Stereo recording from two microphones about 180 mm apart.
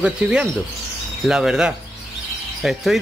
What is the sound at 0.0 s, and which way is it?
Speech, 5° right (ahead or behind).